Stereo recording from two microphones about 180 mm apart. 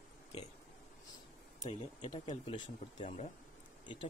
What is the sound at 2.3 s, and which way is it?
Speech, 30° left (ahead or behind).